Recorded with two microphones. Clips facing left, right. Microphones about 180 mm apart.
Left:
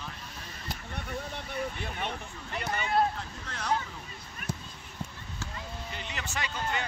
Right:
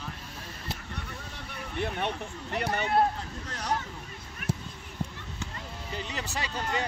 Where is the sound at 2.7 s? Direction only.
60° right (ahead or behind).